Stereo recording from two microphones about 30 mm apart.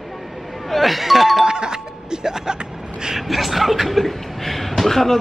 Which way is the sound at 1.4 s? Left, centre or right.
Right.